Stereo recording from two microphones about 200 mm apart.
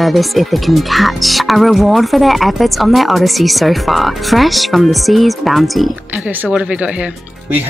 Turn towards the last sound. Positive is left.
turn(degrees=-5)  # may be behind; listen again after turning